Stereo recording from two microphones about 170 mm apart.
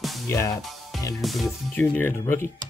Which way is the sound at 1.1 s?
Centre (ahead or behind).